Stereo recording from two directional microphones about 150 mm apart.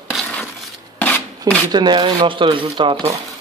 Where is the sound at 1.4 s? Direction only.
30° right (ahead or behind).